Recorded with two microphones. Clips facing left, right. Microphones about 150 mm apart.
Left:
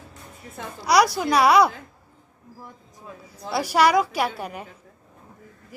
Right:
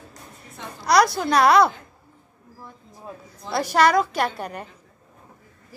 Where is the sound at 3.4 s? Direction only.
10° left (ahead or behind).